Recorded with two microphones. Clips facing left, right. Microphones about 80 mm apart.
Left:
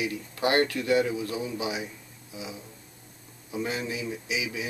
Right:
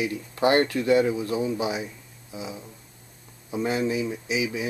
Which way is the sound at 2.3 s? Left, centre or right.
Right.